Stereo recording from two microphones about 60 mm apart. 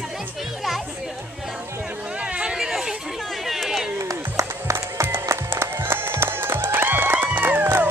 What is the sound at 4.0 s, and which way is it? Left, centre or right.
Run, right.